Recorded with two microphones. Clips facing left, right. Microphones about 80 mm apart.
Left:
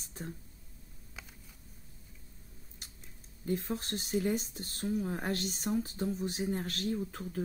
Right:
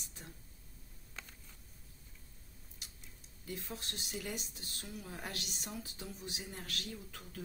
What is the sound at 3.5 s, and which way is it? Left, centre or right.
Speech, left.